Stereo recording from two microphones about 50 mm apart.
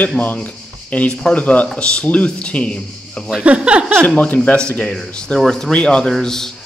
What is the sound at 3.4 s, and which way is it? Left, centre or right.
Speech, right.